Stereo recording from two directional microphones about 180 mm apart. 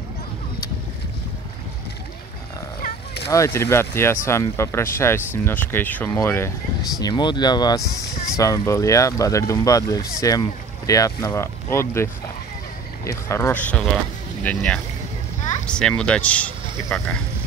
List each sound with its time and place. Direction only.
3.3 s speech: 15° left (ahead or behind)
13.0 s speech: 15° left (ahead or behind)